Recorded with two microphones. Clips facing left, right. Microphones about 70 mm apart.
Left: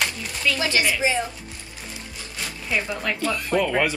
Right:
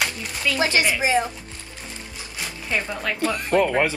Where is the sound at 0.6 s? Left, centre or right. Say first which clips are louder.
Right 4 dB; right.